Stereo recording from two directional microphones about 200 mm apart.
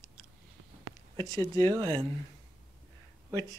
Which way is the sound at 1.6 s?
20° right (ahead or behind).